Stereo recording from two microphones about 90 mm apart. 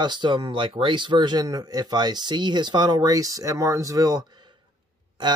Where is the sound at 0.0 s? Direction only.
55° right (ahead or behind).